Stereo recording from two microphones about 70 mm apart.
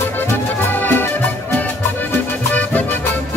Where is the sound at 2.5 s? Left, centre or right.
Left.